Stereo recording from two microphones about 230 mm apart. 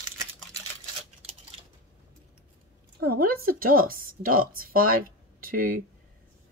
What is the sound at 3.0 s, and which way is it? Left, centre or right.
Speech, right.